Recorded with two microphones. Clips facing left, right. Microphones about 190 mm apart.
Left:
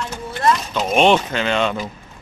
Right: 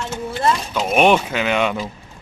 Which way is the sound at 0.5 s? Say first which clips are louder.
Even; 10° right (ahead or behind).